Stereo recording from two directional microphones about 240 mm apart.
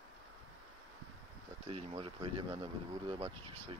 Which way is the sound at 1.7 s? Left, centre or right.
Right.